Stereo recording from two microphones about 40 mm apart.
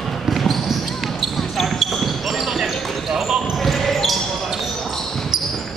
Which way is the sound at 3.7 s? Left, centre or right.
Centre.